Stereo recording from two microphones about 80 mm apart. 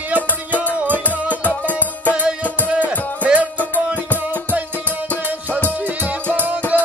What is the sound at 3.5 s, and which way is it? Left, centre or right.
Music, centre.